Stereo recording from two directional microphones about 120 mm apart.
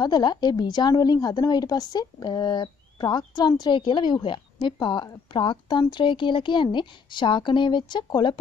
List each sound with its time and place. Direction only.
0.0 s speech: 35° left (ahead or behind)